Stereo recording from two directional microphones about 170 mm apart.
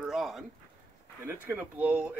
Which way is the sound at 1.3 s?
10° right (ahead or behind).